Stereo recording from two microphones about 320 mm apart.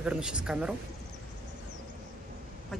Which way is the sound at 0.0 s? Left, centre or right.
Centre.